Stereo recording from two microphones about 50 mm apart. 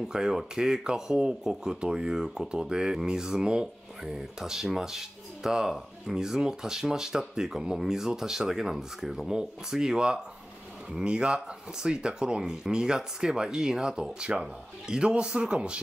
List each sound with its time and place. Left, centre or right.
0.1 s a man's voice: centre